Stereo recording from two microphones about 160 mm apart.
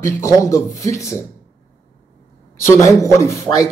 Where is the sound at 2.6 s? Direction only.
20° left (ahead or behind).